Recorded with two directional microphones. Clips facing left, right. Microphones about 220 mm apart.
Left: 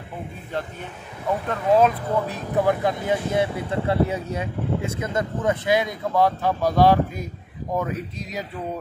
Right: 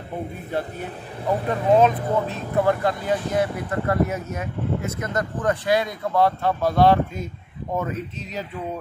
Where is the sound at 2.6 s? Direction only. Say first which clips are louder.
Even; 15° left (ahead or behind).